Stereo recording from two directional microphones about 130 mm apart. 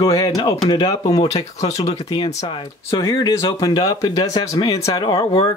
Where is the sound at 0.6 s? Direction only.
35° left (ahead or behind).